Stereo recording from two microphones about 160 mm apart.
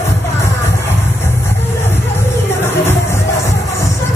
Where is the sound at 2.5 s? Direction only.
15° left (ahead or behind).